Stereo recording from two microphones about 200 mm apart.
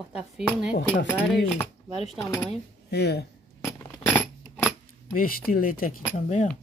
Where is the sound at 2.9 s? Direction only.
55° left (ahead or behind).